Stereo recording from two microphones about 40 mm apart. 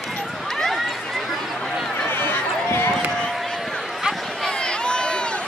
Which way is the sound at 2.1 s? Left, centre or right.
Left.